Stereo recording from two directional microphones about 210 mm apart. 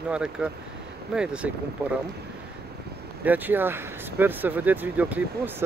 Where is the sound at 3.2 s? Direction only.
10° right (ahead or behind).